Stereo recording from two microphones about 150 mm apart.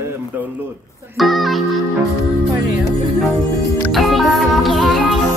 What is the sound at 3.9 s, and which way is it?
Music, centre (ahead or behind).